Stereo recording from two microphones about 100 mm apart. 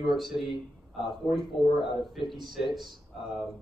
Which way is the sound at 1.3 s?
55° left (ahead or behind).